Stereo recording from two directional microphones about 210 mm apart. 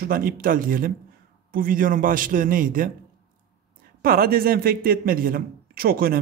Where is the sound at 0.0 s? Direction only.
45° right (ahead or behind).